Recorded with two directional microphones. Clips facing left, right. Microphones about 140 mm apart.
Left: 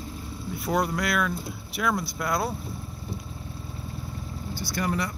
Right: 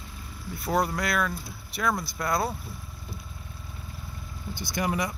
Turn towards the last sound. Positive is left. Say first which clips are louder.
# even
turn(degrees=-15)  # may be behind; listen again after turning